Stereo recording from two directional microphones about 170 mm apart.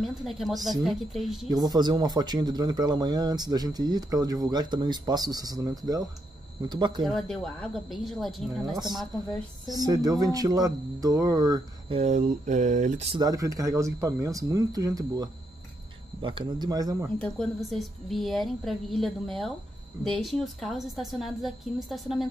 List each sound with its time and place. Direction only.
0.0 s a woman's voice: centre (ahead or behind)
1.5 s speech: 25° right (ahead or behind)
7.1 s a woman's voice: 5° left (ahead or behind)
9.7 s speech: 20° right (ahead or behind)
12.0 s speech: 45° right (ahead or behind)
13.2 s speech: 20° right (ahead or behind)
17.2 s a woman's voice: centre (ahead or behind)